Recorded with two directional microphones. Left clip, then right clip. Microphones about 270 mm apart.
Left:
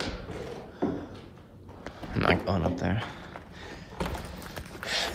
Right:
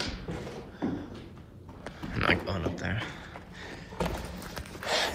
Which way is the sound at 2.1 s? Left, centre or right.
Centre.